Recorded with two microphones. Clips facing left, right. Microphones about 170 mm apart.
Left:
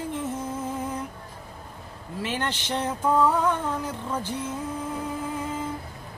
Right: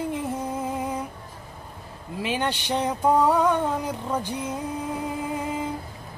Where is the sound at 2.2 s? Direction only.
15° right (ahead or behind).